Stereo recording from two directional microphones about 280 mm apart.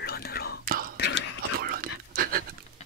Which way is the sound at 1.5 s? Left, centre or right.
Right.